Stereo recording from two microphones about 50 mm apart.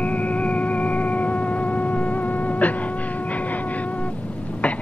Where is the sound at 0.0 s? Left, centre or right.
Left.